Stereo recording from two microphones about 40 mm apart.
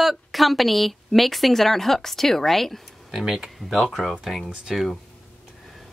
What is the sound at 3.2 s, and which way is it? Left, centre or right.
Speech, centre.